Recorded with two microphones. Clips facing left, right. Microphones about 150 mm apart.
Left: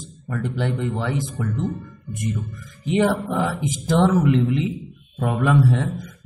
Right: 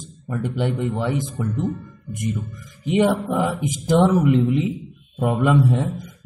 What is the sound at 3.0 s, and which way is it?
A man's voice, 15° right (ahead or behind).